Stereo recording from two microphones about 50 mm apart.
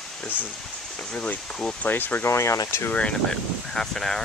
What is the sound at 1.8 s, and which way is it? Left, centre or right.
Speech, left.